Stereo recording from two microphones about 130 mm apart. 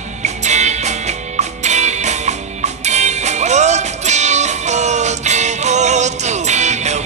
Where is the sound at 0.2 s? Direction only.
65° right (ahead or behind).